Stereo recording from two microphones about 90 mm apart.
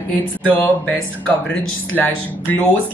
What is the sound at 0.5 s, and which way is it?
Speech, 20° left (ahead or behind).